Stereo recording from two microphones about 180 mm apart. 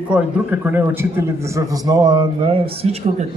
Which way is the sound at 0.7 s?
10° right (ahead or behind).